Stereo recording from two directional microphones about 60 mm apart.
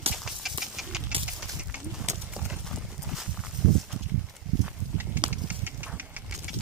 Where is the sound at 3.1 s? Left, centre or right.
Centre.